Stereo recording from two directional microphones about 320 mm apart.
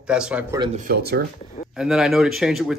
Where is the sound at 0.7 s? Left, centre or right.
Right.